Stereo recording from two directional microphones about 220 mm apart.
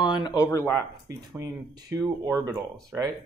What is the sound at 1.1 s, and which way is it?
Speech, 15° right (ahead or behind).